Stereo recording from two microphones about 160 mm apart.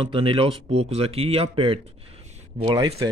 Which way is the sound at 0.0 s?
35° right (ahead or behind).